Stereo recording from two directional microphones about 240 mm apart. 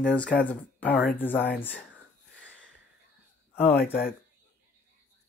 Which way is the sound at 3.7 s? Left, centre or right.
Left.